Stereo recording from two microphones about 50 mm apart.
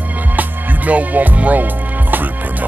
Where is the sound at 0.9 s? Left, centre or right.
Right.